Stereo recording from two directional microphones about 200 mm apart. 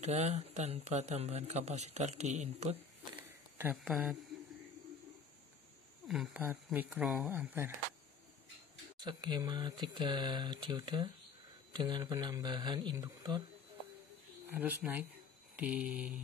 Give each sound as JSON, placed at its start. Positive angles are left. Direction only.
{"t": 0.0, "sound": "speech", "side_deg": -35}
{"t": 3.5, "sound": "speech", "side_deg": -10}
{"t": 6.0, "sound": "speech", "side_deg": 0}
{"t": 9.0, "sound": "speech", "side_deg": -20}
{"t": 14.5, "sound": "speech", "side_deg": -10}